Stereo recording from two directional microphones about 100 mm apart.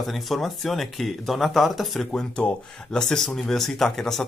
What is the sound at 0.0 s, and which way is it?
Speech, centre (ahead or behind).